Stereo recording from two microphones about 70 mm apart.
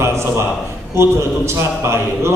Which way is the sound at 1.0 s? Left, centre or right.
Right.